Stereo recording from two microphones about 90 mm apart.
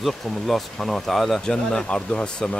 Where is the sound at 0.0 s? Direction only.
Centre (ahead or behind).